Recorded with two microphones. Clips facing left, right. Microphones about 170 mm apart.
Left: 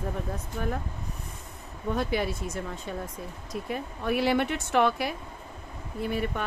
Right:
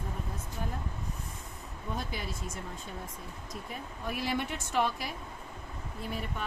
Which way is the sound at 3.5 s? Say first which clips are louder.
Left 9 dB; 70° left (ahead or behind).